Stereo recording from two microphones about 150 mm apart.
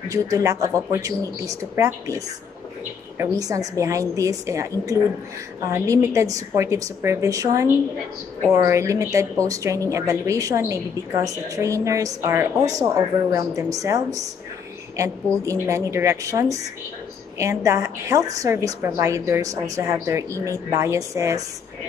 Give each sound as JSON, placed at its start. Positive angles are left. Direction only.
{"t": 0.1, "sound": "speech", "side_deg": -20}
{"t": 15.4, "sound": "speech", "side_deg": -20}